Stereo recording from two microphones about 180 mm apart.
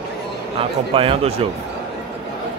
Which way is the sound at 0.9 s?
30° right (ahead or behind).